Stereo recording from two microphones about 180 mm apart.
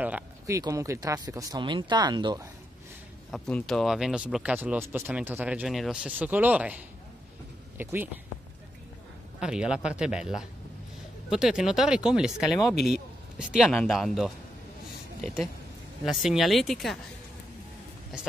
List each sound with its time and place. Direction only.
0.0 s a sound: 10° right (ahead or behind)
0.6 s speech: 20° right (ahead or behind)
3.3 s speech: 5° left (ahead or behind)
9.4 s speech: 5° right (ahead or behind)
16.1 s speech: centre (ahead or behind)
18.1 s speech: centre (ahead or behind)